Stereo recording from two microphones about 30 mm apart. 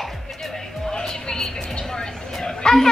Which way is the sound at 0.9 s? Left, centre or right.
Left.